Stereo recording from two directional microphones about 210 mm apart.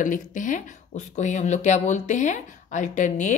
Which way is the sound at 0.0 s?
40° left (ahead or behind).